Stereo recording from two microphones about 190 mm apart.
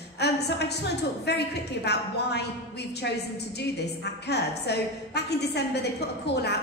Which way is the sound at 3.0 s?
60° left (ahead or behind).